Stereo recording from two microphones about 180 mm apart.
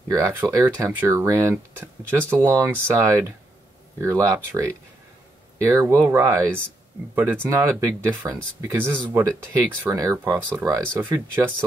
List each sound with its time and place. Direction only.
0.1 s speech: 15° right (ahead or behind)